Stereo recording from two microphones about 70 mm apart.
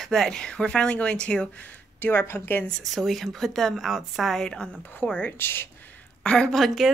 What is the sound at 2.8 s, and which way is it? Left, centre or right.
A woman's voice, centre.